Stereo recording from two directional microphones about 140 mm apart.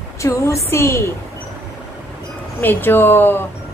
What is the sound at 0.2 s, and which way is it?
Speech, 20° left (ahead or behind).